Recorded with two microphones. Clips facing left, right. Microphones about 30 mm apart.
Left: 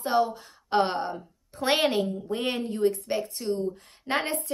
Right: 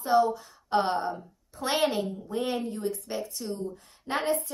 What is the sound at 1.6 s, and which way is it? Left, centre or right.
A woman's voice, left.